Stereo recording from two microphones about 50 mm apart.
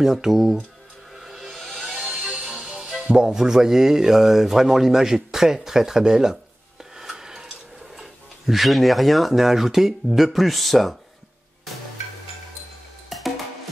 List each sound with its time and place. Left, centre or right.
0.0 s speech: centre
1.1 s music: centre
2.4 s music: centre
3.1 s speech: centre
6.8 s dishes: centre
13.1 s music: centre